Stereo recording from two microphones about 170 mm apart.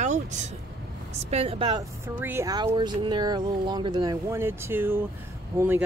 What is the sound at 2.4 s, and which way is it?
Speech, 25° right (ahead or behind).